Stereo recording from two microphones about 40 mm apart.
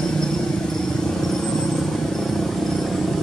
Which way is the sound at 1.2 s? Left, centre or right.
Centre.